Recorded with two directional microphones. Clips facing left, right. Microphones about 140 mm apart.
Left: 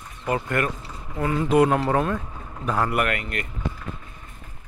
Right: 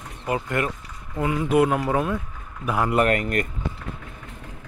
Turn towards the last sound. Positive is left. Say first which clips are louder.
# right 5 dB
turn(degrees=-40)  # may be behind; listen again after turning